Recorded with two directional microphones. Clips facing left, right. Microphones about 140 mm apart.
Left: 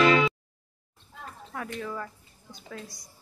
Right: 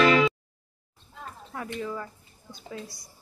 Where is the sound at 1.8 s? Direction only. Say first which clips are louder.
Right 3 dB; 5° right (ahead or behind).